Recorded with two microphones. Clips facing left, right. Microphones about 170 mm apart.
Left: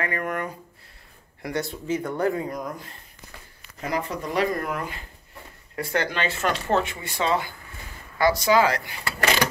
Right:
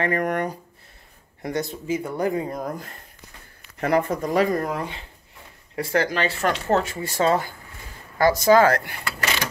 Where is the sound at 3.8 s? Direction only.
60° right (ahead or behind).